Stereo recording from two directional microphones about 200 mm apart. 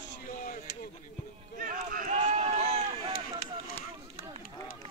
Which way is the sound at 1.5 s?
45° right (ahead or behind).